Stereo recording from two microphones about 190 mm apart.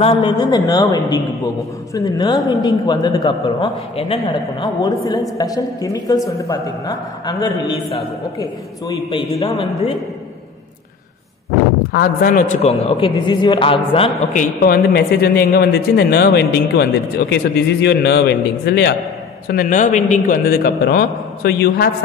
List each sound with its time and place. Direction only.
0.0 s speech: 25° left (ahead or behind)
11.9 s a man's voice: 50° left (ahead or behind)
12.8 s speech: 30° left (ahead or behind)
14.3 s a man's voice: 45° left (ahead or behind)